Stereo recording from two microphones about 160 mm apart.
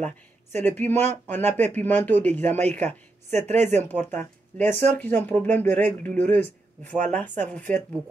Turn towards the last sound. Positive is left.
turn(degrees=10)  # may be behind; listen again after turning